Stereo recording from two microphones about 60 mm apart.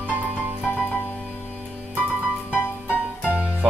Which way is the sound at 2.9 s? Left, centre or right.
Right.